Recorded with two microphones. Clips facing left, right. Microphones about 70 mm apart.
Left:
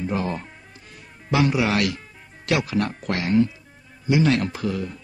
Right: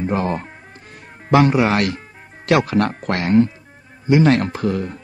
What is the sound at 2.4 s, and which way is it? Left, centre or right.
Speech, right.